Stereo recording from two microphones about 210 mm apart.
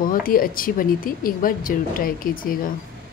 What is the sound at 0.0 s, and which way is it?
Speech, 40° left (ahead or behind).